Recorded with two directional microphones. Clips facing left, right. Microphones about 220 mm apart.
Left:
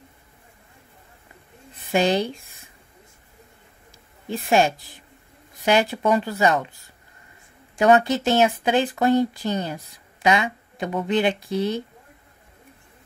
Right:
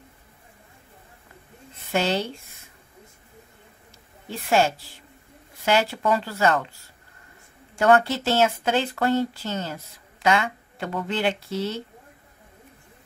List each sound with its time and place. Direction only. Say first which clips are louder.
1.9 s speech: left 4 dB; 15° left (ahead or behind)
4.3 s speech: left 2 dB; 15° left (ahead or behind)